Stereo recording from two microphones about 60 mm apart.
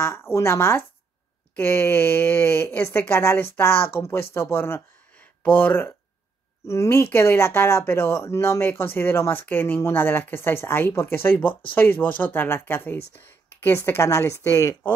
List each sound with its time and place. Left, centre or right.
0.0 s speech: left
6.7 s speech: left